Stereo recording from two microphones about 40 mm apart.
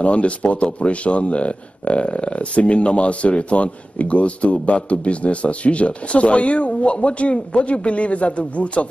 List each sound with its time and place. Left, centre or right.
0.0 s speech: left